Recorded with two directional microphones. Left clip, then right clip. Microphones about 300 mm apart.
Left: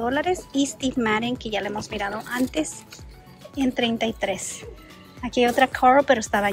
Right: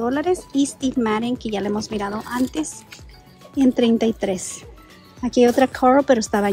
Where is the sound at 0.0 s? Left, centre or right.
Centre.